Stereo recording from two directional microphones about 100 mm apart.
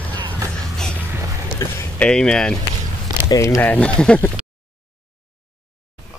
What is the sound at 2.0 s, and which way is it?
Speech, 10° left (ahead or behind).